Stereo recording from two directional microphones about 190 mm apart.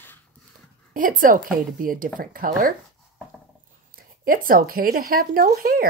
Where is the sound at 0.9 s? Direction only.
45° right (ahead or behind).